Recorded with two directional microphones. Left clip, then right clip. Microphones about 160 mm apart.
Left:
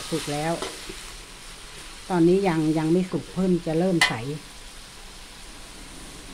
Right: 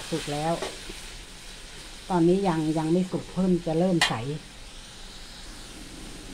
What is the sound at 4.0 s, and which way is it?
Stir, 10° left (ahead or behind).